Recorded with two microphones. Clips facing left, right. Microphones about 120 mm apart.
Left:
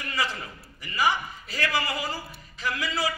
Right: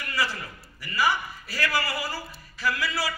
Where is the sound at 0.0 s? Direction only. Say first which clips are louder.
Right 1 dB; 20° left (ahead or behind).